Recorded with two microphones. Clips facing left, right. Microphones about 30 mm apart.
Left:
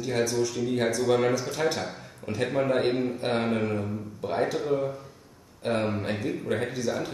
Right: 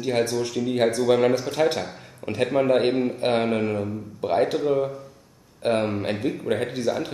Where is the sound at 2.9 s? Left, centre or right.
Centre.